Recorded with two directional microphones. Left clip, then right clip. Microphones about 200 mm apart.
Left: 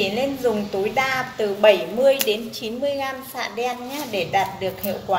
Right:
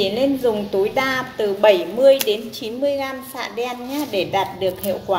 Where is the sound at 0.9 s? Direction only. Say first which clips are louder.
Right 1 dB; 30° right (ahead or behind).